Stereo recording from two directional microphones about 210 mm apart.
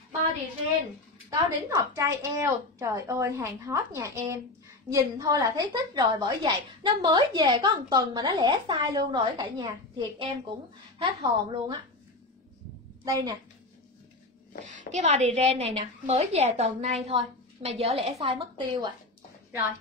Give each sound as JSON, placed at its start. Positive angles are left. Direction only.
{"t": 1.3, "sound": "a woman's voice", "side_deg": -15}
{"t": 13.0, "sound": "a woman's voice", "side_deg": -15}
{"t": 14.9, "sound": "a woman's voice", "side_deg": -35}